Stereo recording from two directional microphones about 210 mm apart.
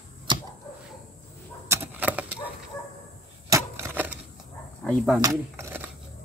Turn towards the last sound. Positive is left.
turn(degrees=-10)  # may be behind; listen again after turning